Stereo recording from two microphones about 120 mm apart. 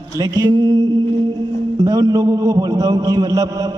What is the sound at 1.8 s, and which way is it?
A man's voice, 30° right (ahead or behind).